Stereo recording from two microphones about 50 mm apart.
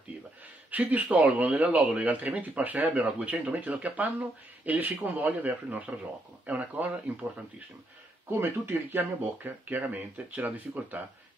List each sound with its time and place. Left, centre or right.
0.7 s speech: right
8.3 s speech: right
9.2 s speech: right